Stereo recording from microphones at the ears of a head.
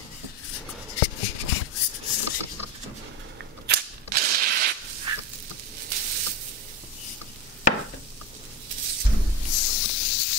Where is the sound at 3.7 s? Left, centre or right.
Right.